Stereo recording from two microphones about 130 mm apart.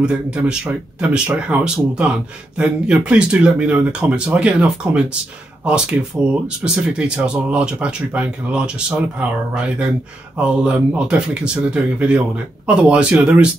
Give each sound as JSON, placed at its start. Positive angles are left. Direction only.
{"t": 0.0, "sound": "speech", "side_deg": -5}
{"t": 10.4, "sound": "speech", "side_deg": -5}